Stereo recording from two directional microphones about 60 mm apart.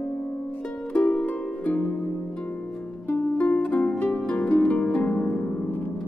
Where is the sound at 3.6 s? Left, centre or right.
Left.